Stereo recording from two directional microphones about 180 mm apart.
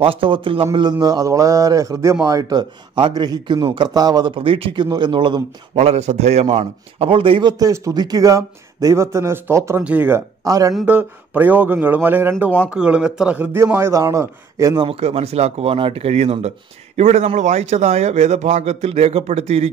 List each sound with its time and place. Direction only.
0.0 s speech: 30° right (ahead or behind)
10.7 s a man's voice: 5° right (ahead or behind)
14.9 s speech: 35° right (ahead or behind)